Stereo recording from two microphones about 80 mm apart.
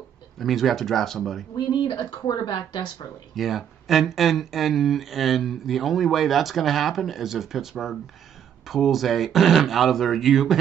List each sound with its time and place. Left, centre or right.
0.4 s speech: centre
1.7 s speech: left
3.3 s speech: centre